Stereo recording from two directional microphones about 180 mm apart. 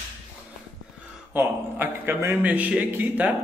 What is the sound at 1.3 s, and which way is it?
Speech, 10° right (ahead or behind).